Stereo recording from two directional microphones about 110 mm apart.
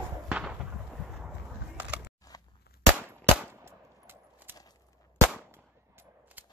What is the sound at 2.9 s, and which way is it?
Gunshot, 20° right (ahead or behind).